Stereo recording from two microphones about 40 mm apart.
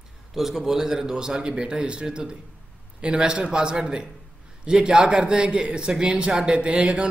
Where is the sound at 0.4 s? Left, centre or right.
Centre.